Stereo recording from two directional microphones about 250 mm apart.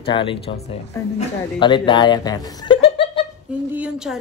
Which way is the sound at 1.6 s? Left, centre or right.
Centre.